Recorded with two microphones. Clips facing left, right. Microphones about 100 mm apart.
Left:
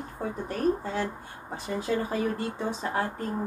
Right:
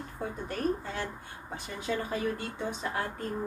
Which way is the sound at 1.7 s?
35° left (ahead or behind).